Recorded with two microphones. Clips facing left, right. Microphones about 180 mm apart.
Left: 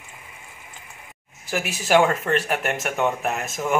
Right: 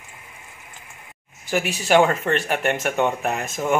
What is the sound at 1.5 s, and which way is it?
Speech, centre (ahead or behind).